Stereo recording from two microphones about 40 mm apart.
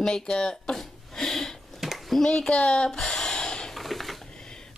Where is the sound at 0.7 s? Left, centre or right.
Centre.